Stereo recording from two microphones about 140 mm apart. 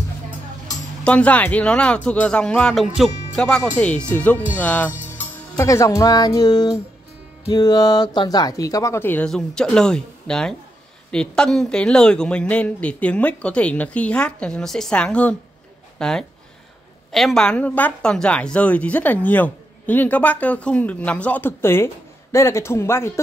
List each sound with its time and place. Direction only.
1.0 s a woman's voice: 10° left (ahead or behind)
5.1 s music: 20° left (ahead or behind)
7.4 s a woman's voice: 30° left (ahead or behind)